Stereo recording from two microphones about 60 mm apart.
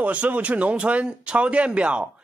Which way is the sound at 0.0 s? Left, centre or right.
Right.